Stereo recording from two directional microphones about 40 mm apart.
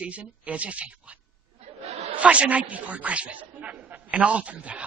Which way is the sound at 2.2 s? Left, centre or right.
Right.